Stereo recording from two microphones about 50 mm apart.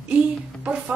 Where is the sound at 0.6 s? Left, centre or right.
Right.